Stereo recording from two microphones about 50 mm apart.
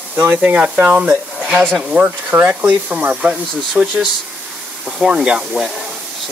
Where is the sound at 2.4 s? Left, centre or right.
Right.